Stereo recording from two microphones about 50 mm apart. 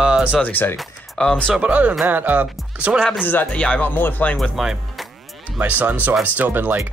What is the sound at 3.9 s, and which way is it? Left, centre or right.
Speech, left.